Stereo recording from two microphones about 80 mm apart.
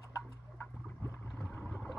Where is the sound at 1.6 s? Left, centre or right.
Centre.